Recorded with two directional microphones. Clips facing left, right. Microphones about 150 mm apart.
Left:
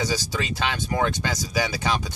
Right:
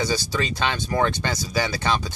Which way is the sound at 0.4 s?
5° left (ahead or behind).